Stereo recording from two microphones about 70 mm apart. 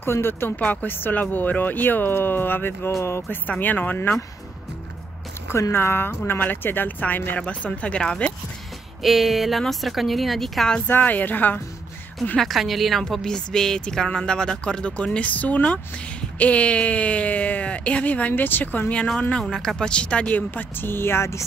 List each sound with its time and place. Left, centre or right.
0.0 s speech: left
2.9 s speech: left
3.3 s speech: left
5.5 s speech: left; by 8.3 s centre
9.0 s speech: centre
10.9 s speech: left
12.4 s a woman's voice: centre; by 21.5 s left